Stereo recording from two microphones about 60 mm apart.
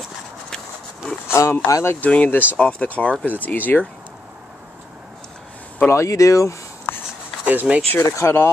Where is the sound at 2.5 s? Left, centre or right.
Centre.